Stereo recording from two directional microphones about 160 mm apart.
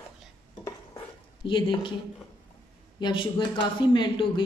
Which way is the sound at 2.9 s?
30° left (ahead or behind).